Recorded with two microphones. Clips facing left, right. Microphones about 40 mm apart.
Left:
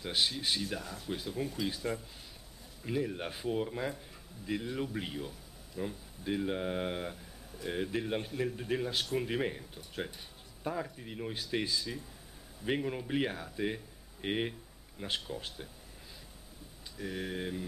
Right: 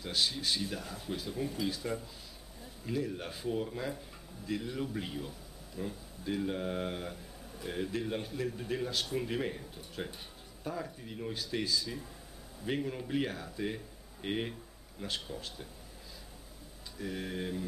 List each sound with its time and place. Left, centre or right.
0.0 s speech: centre
0.6 s speech: centre
10.6 s speech: centre
17.0 s speech: centre